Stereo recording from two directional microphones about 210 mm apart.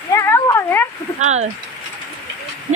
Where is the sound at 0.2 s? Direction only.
10° left (ahead or behind).